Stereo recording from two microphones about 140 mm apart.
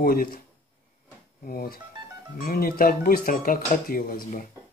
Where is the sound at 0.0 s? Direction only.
90° left.